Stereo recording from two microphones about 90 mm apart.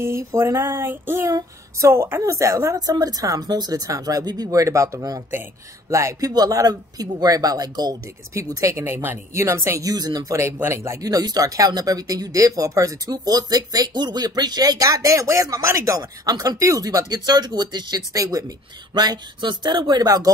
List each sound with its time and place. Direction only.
0.0 s a woman's voice: 30° right (ahead or behind)
0.7 s child singing: 25° right (ahead or behind)
1.8 s a woman's voice: 30° right (ahead or behind)
6.3 s a woman's voice: 45° right (ahead or behind)
18.9 s speech: 55° right (ahead or behind)